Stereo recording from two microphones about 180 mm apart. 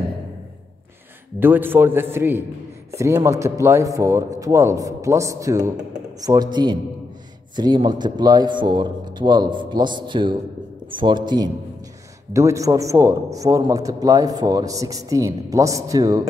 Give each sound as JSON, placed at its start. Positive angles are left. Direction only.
{"t": 1.4, "sound": "a man's voice", "side_deg": -10}